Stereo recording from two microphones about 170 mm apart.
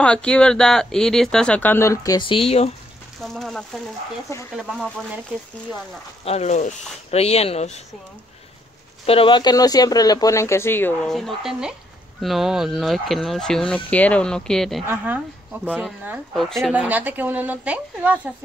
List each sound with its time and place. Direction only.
0.0 s speech: 5° left (ahead or behind); by 2.7 s 35° left (ahead or behind)
3.2 s speech: centre (ahead or behind)
6.2 s speech: 40° left (ahead or behind)
9.0 s speech: 35° left (ahead or behind); by 11.1 s 10° left (ahead or behind)
11.1 s speech: centre (ahead or behind)
14.9 s a woman's voice: 10° right (ahead or behind)
16.7 s a woman's voice: 10° right (ahead or behind)